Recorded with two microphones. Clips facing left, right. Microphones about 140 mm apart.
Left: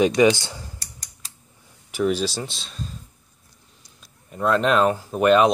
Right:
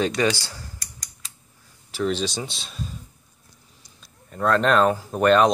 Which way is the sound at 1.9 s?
10° left (ahead or behind).